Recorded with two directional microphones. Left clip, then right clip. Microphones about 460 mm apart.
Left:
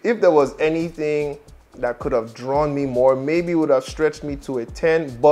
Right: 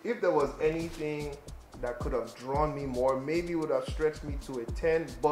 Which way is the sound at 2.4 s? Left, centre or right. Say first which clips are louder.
Left 11 dB; left.